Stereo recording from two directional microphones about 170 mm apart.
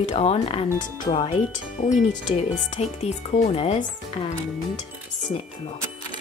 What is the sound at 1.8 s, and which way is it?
Speech, 45° left (ahead or behind).